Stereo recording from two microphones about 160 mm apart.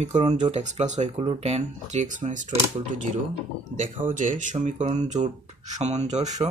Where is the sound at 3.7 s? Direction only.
50° right (ahead or behind).